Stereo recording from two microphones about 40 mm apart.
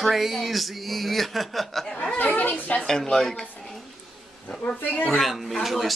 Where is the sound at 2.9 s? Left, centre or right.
Centre.